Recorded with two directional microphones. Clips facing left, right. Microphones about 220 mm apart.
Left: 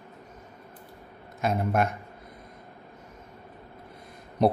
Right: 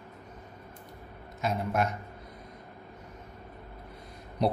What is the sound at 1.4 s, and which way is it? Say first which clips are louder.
Speech: left 4 dB; 55° left (ahead or behind).